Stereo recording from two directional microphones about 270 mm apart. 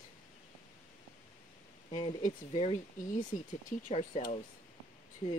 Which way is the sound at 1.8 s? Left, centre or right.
Centre.